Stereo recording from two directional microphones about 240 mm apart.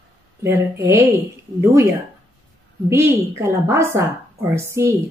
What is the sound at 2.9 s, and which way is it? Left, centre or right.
A woman's voice, centre.